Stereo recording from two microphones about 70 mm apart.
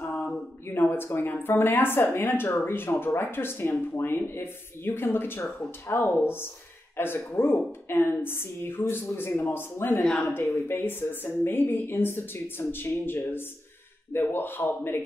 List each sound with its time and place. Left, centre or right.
0.0 s a sound: left
0.7 s a woman's voice: left
10.0 s speech: centre
10.3 s a woman's voice: left